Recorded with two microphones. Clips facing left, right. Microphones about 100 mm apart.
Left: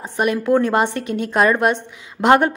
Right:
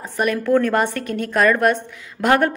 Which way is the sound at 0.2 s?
20° left (ahead or behind).